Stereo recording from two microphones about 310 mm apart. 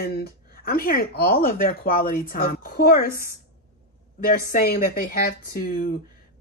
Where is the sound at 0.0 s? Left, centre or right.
Left.